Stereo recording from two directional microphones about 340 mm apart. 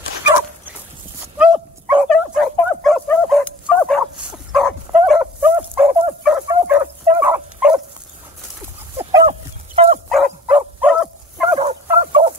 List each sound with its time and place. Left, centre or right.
1.4 s dog: centre
8.9 s dog: centre
10.0 s dog: centre
11.5 s fowl: centre